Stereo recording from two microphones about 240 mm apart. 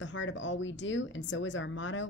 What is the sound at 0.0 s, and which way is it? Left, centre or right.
A woman's voice, left.